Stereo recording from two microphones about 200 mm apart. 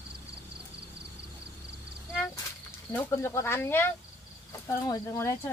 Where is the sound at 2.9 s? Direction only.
10° left (ahead or behind).